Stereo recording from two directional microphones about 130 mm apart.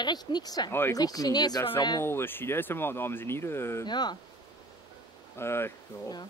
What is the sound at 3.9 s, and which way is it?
Speech, 35° left (ahead or behind).